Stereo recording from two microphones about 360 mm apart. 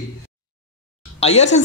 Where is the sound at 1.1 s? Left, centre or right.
Centre.